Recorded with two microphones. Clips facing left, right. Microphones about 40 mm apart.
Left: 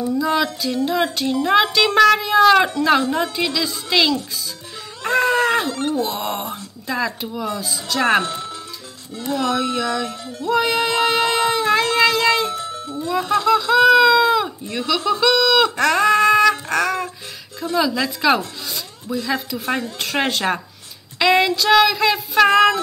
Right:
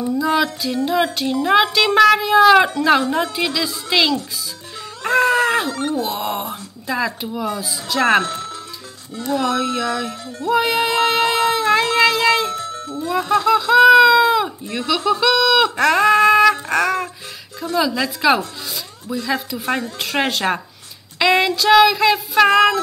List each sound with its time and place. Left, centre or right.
0.2 s speech: centre
8.3 s music: centre
9.3 s speech: centre
12.5 s music: centre
13.0 s speech: centre